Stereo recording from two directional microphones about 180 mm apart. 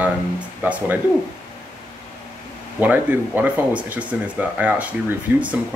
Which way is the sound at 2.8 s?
10° right (ahead or behind).